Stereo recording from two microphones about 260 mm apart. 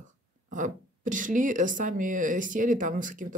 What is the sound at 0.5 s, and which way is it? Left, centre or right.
Speech, right.